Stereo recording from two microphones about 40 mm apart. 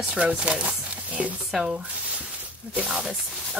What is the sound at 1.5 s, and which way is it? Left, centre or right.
Speech, centre.